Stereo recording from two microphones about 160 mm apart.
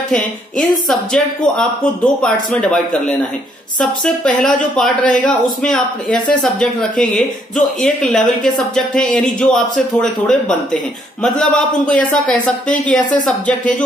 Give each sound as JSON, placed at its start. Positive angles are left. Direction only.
{"t": 0.1, "sound": "speech", "side_deg": 5}
{"t": 4.7, "sound": "speech", "side_deg": 5}